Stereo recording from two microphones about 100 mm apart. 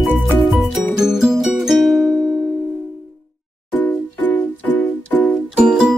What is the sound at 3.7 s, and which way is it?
Music, 15° left (ahead or behind).